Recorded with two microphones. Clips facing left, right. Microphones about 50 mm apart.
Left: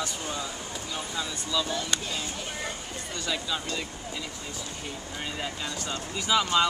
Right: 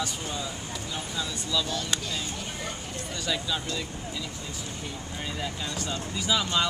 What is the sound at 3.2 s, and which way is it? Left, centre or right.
Speech, centre.